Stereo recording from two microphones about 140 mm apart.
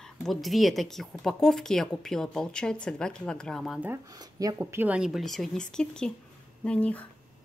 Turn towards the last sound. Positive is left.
turn(degrees=10)  # may be behind; listen again after turning